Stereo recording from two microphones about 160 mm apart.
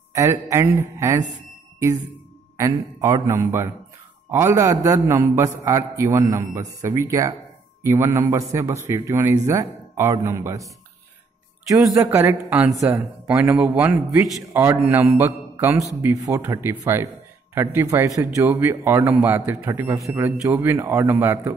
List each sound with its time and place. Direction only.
0.1 s a man's voice: 15° right (ahead or behind)
2.5 s a man's voice: 20° right (ahead or behind)
11.9 s a man's voice: 20° right (ahead or behind)